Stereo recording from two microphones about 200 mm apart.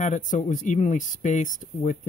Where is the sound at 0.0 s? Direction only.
35° left (ahead or behind).